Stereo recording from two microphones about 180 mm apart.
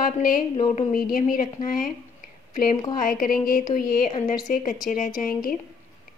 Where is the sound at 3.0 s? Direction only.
50° left (ahead or behind).